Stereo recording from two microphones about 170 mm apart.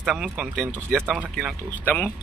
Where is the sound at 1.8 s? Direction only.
10° left (ahead or behind).